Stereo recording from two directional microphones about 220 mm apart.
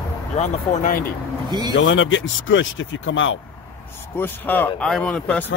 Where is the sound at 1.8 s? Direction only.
60° left (ahead or behind).